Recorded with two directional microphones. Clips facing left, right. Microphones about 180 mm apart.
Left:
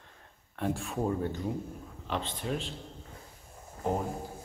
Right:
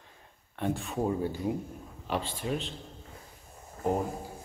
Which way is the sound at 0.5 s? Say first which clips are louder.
Right 1 dB; centre (ahead or behind).